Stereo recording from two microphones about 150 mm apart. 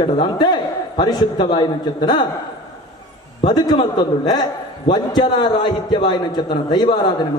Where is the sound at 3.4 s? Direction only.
25° left (ahead or behind).